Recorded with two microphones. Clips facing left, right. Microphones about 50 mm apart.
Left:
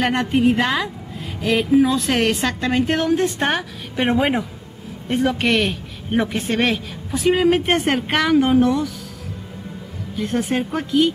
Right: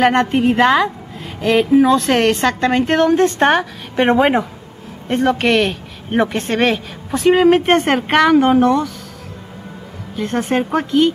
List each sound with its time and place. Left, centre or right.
0.1 s a woman's voice: centre
0.4 s speech: centre
2.0 s a woman's voice: centre
7.2 s speech: centre
8.6 s a woman's voice: centre
10.2 s a woman's voice: centre